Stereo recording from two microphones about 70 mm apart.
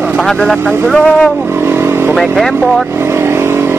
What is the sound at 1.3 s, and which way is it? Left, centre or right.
Vehicle, right.